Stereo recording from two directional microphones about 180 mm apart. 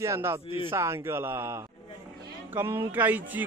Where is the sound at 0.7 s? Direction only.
15° right (ahead or behind).